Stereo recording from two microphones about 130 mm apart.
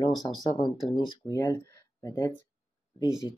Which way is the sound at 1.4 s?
25° left (ahead or behind).